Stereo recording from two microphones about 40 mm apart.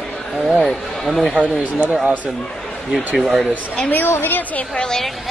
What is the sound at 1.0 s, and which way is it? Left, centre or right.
Speech, centre.